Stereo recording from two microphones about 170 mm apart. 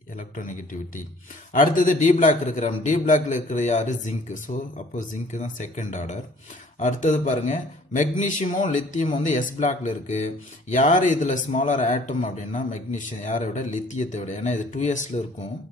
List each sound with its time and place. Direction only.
0.2 s a man's voice: 50° left (ahead or behind)